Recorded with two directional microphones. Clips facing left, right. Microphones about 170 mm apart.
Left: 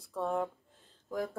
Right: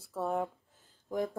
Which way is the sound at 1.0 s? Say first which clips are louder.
Right 2 dB; 20° right (ahead or behind).